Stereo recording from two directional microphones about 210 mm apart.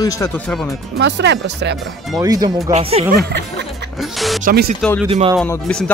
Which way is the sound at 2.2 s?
20° right (ahead or behind).